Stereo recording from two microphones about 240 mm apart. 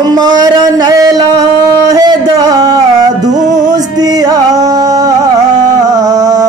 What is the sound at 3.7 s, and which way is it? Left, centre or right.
Music, centre.